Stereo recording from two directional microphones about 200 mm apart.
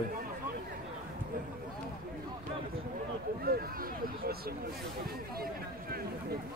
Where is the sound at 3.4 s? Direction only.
50° right (ahead or behind).